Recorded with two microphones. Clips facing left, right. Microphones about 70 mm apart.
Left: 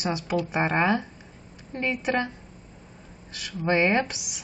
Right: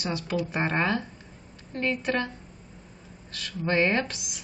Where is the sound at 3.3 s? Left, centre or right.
Centre.